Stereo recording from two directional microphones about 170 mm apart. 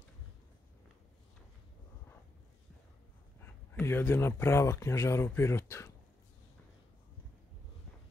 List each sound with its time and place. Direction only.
3.8 s speech: 15° left (ahead or behind)